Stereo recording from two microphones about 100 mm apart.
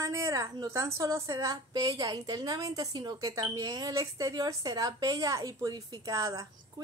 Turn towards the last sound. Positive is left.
turn(degrees=-35)  # may be behind; listen again after turning